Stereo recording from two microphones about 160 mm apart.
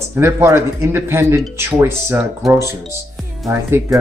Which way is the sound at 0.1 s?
15° right (ahead or behind).